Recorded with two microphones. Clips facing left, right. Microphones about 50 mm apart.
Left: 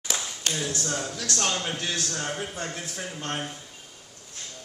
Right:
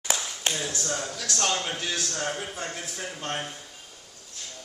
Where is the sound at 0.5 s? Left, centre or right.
Right.